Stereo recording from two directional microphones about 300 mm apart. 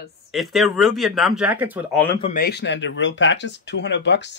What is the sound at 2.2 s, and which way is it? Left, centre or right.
Speech, left.